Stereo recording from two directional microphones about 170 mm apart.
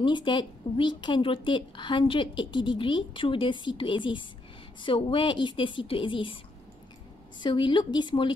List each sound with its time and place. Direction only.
0.0 s a woman's voice: 30° left (ahead or behind)
7.4 s a woman's voice: 25° left (ahead or behind)